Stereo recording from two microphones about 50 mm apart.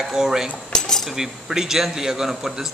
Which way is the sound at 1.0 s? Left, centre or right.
Centre.